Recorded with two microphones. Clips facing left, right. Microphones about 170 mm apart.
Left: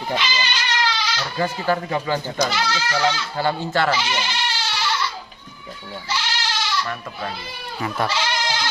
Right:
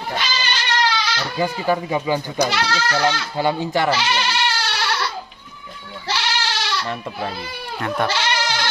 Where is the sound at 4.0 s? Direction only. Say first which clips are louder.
Right 3 dB; 70° right (ahead or behind).